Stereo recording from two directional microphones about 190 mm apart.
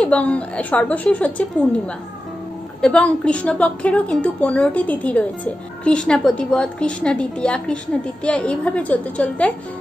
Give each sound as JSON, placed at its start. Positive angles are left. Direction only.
{"t": 0.0, "sound": "a woman's voice", "side_deg": 5}
{"t": 2.8, "sound": "a woman's voice", "side_deg": 5}